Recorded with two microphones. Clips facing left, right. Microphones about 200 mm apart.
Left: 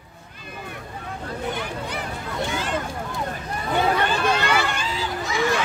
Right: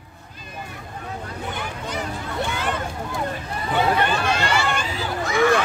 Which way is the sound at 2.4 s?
60° right (ahead or behind).